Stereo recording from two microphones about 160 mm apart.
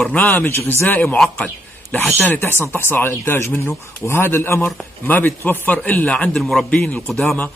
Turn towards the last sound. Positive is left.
turn(degrees=5)  # may be behind; listen again after turning